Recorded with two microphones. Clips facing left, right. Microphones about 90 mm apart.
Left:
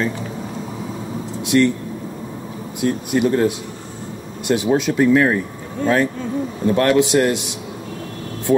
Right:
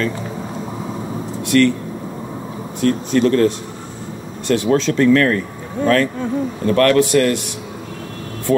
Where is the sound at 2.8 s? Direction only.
15° left (ahead or behind).